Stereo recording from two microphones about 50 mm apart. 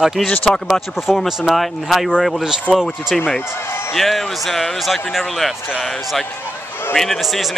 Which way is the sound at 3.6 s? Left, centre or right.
Left.